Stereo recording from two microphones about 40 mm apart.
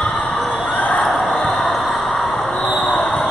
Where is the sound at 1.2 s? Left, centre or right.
Centre.